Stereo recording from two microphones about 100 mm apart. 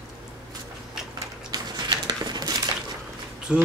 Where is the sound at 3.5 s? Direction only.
10° right (ahead or behind).